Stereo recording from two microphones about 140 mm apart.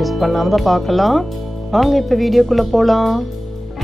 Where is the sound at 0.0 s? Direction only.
Centre (ahead or behind).